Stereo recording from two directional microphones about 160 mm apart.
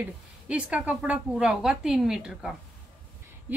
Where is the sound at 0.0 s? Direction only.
10° right (ahead or behind).